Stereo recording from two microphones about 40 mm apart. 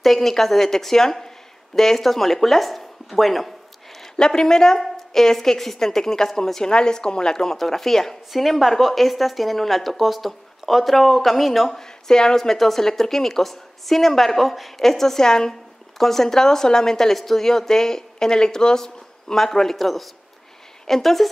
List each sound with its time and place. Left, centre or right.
0.0 s a woman's voice: centre
4.2 s a woman's voice: centre
12.4 s a woman's voice: centre